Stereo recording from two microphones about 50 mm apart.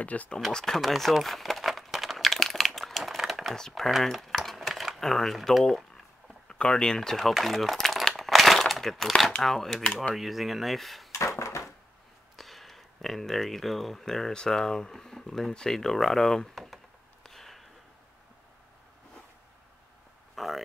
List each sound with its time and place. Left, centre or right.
0.0 s speech: left
0.5 s speech: centre
0.7 s crumpling: centre
3.0 s a sound: centre
3.5 s speech: centre
3.9 s crumpling: centre
6.4 s speech: centre
8.2 s crushing: centre
9.4 s speech: centre
11.1 s dishes: left
12.4 s speech: centre
20.3 s a sound: centre